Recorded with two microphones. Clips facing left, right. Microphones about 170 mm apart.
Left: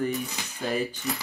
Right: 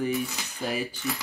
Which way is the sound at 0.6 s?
Centre (ahead or behind).